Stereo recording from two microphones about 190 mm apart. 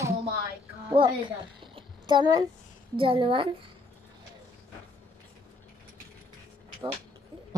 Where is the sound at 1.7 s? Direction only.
25° right (ahead or behind).